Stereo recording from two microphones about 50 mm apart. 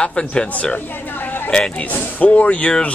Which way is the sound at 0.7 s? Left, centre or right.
Left.